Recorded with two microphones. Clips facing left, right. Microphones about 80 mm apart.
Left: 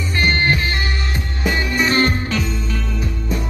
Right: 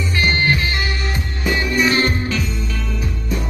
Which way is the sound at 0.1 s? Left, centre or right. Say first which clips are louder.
Left 1 dB; left.